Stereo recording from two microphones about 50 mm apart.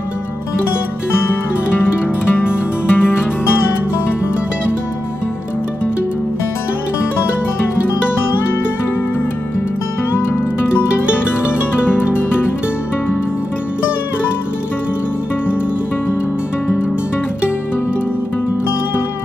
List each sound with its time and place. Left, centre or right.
2.3 s music: left